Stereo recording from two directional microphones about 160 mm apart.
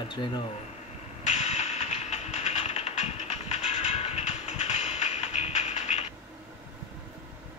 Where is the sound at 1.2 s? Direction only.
45° left (ahead or behind).